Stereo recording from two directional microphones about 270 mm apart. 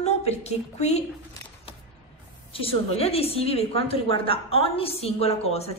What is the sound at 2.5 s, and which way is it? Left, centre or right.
A woman's voice, left.